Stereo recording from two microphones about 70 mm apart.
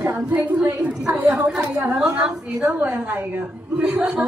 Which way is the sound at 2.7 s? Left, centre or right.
Right.